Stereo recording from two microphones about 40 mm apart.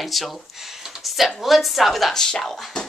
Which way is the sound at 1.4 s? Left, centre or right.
Centre.